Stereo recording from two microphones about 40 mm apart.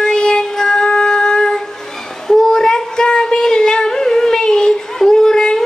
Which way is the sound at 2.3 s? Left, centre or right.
Centre.